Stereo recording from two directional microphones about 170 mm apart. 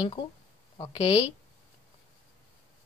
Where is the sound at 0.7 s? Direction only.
25° left (ahead or behind).